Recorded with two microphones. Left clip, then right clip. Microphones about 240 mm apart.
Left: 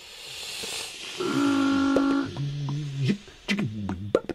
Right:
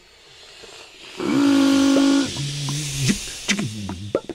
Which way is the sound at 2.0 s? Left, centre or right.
Right.